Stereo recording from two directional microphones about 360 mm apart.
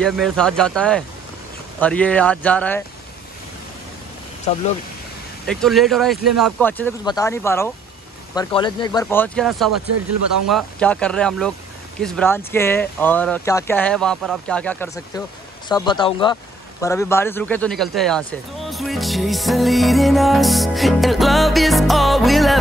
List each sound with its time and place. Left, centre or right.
0.0 s speech: centre
5.5 s speech: centre
9.7 s speech: right
10.5 s speech: centre